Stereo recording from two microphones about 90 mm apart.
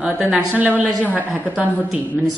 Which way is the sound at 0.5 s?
20° right (ahead or behind).